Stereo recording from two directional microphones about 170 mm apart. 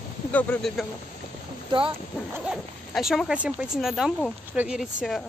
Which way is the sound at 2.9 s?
Centre (ahead or behind).